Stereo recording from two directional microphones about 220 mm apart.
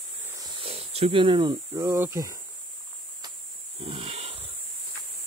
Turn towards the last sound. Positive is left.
turn(degrees=-25)  # may be behind; listen again after turning